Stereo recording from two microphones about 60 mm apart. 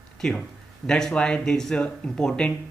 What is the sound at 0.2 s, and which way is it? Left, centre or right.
Speech, centre.